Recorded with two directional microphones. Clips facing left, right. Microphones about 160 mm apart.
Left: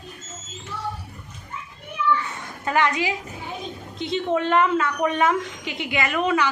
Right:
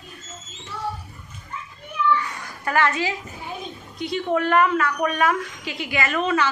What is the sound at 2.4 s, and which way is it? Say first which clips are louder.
A child's voice: even; 20° left (ahead or behind).